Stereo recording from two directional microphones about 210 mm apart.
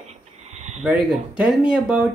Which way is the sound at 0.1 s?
30° right (ahead or behind).